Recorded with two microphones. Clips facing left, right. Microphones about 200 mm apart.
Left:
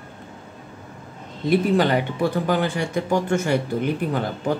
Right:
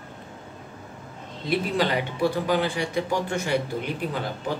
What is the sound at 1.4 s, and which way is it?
Speech, 50° left (ahead or behind).